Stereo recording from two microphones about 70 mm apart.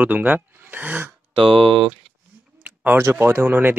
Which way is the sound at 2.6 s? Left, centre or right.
Right.